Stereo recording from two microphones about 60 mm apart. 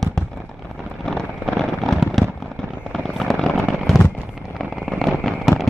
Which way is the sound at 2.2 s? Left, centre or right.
Centre.